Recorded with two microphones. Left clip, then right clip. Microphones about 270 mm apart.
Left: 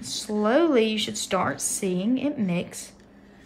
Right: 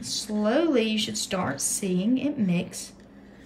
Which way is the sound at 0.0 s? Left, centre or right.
Left.